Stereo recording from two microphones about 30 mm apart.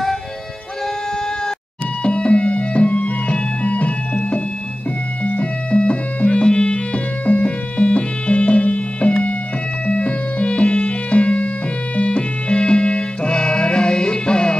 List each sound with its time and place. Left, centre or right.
2.0 s music: left
5.2 s music: left